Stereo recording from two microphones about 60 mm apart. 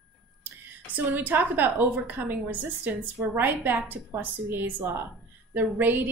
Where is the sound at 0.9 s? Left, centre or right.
Right.